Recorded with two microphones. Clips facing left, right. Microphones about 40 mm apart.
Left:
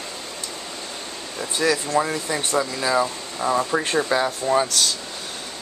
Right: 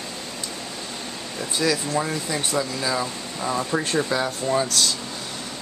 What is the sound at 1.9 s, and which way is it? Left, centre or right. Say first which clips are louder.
Speech: left 3 dB; centre.